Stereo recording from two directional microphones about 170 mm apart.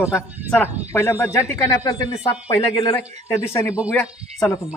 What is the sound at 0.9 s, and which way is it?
A man's voice, 15° left (ahead or behind).